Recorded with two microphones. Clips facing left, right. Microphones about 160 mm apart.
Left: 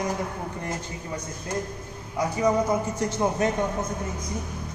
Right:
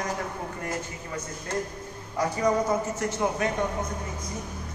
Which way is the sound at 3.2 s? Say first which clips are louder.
Left 3 dB; 25° left (ahead or behind).